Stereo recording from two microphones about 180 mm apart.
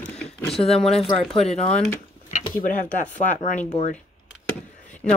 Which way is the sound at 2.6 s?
50° left (ahead or behind).